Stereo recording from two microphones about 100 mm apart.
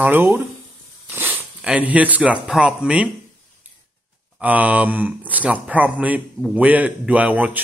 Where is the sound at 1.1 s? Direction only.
25° right (ahead or behind).